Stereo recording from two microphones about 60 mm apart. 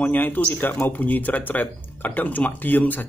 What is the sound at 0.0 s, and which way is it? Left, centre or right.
Speech, left.